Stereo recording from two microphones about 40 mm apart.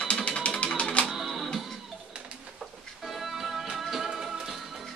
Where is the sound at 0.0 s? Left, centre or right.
Left.